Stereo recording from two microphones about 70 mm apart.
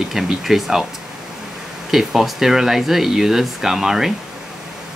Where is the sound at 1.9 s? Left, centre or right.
Centre.